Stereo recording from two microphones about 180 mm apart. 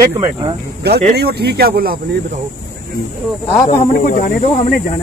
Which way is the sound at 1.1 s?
65° right (ahead or behind).